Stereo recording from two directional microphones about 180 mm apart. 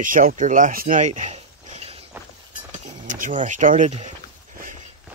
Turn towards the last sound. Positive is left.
turn(degrees=-40)  # may be behind; listen again after turning